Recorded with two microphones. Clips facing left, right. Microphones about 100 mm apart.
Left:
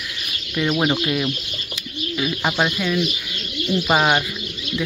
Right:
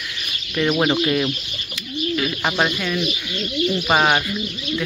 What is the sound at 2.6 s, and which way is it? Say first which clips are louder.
Speech: left 1 dB; 5° left (ahead or behind).